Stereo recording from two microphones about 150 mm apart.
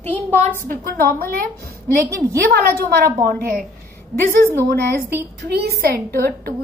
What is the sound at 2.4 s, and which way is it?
Speech, 90° right.